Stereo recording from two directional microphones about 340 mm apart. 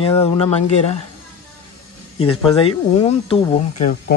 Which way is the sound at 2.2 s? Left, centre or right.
Centre.